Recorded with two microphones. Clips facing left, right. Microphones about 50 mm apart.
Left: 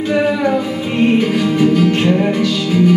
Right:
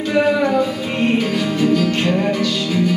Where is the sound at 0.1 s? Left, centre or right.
Centre.